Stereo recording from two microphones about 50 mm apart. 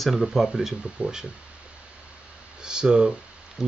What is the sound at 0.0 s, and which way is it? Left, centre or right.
Speech, centre.